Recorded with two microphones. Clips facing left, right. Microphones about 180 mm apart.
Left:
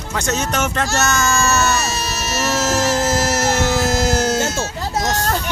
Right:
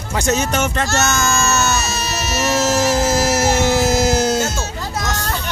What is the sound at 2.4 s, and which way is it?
Music, centre (ahead or behind).